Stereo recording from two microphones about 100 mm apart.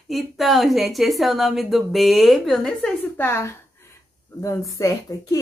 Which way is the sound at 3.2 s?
25° left (ahead or behind).